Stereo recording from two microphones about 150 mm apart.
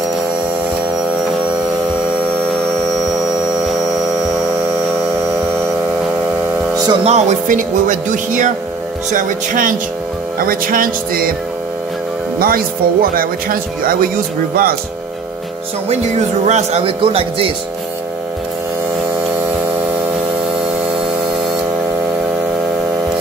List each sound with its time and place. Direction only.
7.1 s speech: 50° right (ahead or behind)
10.4 s speech: 75° right (ahead or behind)
12.4 s speech: 75° right (ahead or behind)
16.4 s a man's voice: 45° right (ahead or behind)